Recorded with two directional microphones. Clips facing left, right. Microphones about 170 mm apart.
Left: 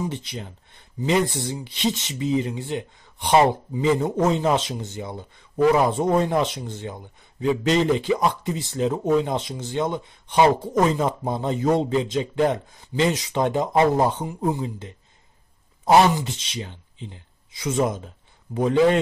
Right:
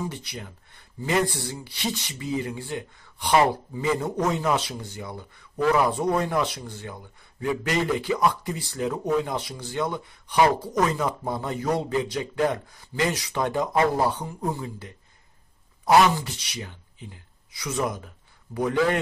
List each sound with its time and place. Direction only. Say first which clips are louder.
0.0 s speech: left 4 dB; 20° left (ahead or behind)